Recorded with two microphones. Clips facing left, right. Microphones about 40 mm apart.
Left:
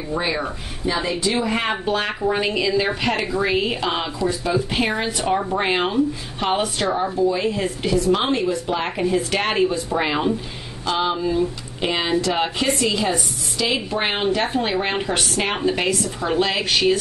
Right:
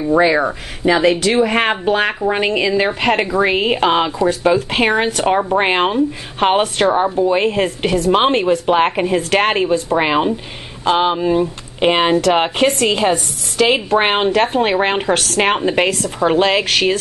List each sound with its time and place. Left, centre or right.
0.1 s a woman's voice: right
15.1 s a woman's voice: right
15.5 s a woman's voice: right